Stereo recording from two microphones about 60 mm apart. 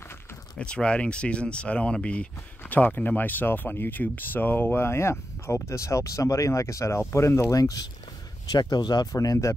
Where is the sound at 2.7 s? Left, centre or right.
Left.